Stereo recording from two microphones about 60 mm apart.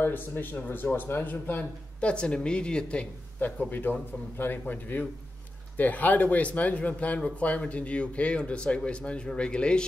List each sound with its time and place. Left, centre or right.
0.0 s speech: left
2.0 s a woman's voice: centre
3.3 s speech: left